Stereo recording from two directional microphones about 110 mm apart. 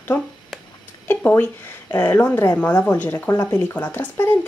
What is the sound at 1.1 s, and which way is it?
Speech, 15° left (ahead or behind).